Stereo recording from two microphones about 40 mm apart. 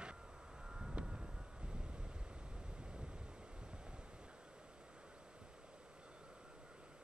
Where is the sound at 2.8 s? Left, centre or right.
Right.